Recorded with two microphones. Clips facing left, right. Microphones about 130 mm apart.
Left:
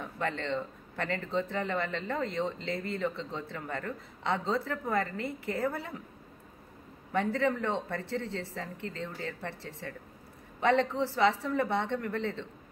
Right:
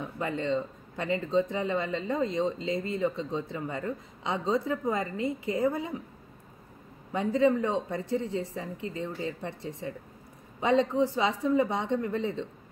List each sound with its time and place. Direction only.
0.0 s speech: 15° right (ahead or behind)
7.1 s speech: 15° right (ahead or behind)